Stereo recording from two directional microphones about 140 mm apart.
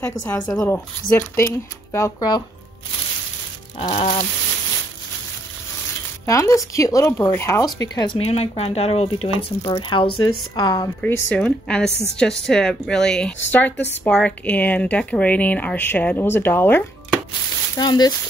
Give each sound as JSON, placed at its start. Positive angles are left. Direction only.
{"t": 0.0, "sound": "a woman's voice", "side_deg": 15}
{"t": 3.9, "sound": "speech", "side_deg": 55}
{"t": 6.2, "sound": "speech", "side_deg": 20}
{"t": 8.2, "sound": "speech", "side_deg": 45}
{"t": 11.0, "sound": "a woman's voice", "side_deg": 10}
{"t": 17.7, "sound": "speech", "side_deg": 30}